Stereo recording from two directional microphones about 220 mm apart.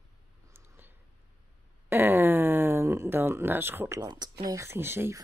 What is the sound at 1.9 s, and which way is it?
Speech, 10° right (ahead or behind).